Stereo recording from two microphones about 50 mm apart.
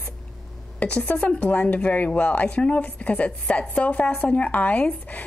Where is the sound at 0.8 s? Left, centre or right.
Left.